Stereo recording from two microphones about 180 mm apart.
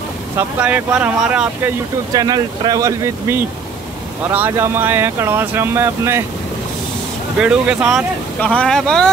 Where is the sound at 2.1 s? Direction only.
20° right (ahead or behind).